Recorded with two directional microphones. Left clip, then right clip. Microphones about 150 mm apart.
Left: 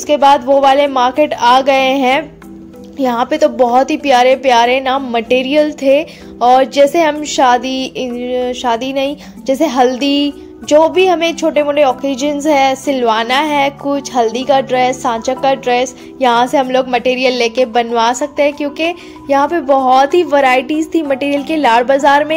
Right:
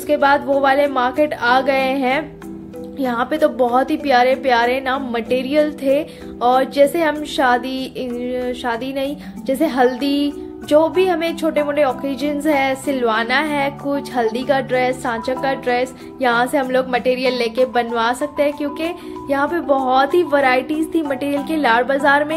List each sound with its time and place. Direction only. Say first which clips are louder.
0.0 s a woman's voice: left 6 dB; 35° left (ahead or behind)